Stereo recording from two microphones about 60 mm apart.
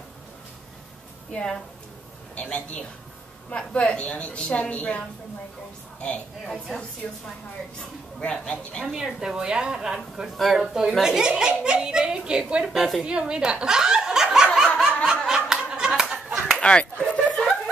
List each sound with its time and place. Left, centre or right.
1.3 s a woman's voice: centre
6.4 s a woman's voice: centre
8.2 s speech: centre
8.8 s a child's voice: centre
10.3 s a child's voice: centre
12.6 s a woman's voice: centre
13.0 s snicker: centre
16.5 s a sound: centre